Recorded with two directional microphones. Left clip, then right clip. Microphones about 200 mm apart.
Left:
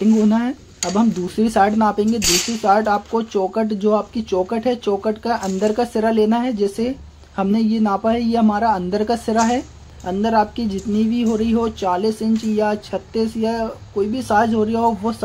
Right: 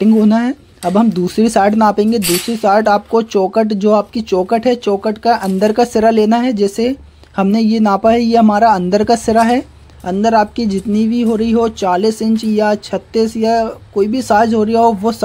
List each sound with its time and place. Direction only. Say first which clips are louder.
0.0 s speech: right 5 dB; 35° right (ahead or behind)